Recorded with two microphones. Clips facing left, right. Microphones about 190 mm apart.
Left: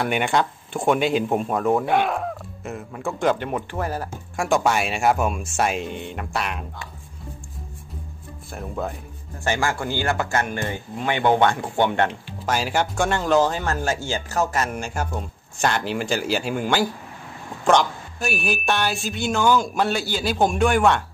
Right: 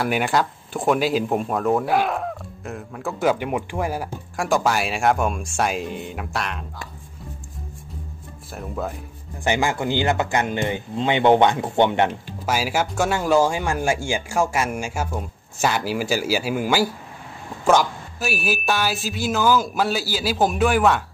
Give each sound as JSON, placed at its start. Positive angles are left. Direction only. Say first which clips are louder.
{"t": 0.0, "sound": "speech", "louder": "even", "side_deg": 0}
{"t": 4.4, "sound": "speech", "louder": "even", "side_deg": 0}
{"t": 8.5, "sound": "speech", "louder": "even", "side_deg": 0}
{"t": 9.4, "sound": "speech", "louder": "right 2 dB", "side_deg": -15}
{"t": 12.4, "sound": "speech", "louder": "even", "side_deg": -5}